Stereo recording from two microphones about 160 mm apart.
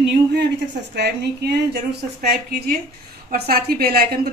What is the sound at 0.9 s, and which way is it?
A woman's voice, 90° right.